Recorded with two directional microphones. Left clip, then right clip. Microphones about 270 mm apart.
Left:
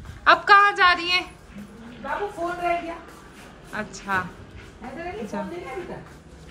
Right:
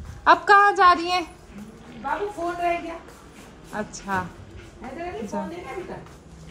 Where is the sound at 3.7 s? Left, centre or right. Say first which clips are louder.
Left 1 dB; centre.